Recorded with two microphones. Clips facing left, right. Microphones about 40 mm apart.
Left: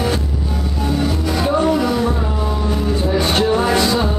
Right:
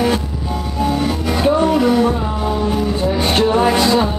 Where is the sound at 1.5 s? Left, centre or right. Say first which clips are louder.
Right 3 dB; centre.